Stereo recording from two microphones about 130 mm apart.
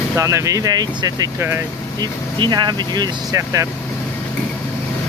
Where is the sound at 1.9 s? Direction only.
20° left (ahead or behind).